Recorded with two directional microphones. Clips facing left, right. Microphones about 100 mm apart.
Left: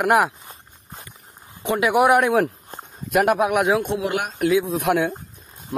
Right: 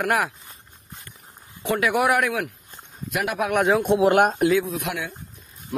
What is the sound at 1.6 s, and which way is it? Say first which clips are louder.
Speech: left 3 dB; 20° left (ahead or behind).